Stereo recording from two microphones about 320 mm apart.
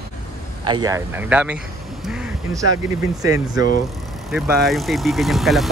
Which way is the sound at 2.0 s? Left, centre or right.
Centre.